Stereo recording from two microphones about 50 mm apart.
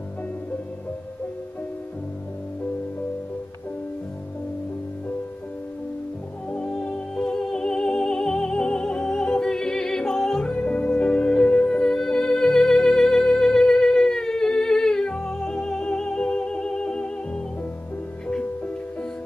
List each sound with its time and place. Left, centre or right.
6.5 s music: centre